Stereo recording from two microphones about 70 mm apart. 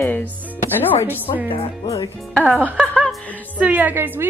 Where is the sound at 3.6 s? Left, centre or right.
Right.